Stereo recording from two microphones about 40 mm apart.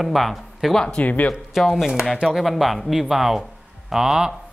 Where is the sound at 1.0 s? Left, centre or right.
Left.